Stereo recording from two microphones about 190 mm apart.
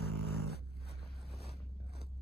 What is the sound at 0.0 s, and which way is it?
Vehicle, 55° left (ahead or behind).